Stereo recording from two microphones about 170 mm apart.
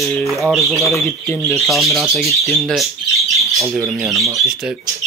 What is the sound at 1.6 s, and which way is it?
Speech, centre (ahead or behind).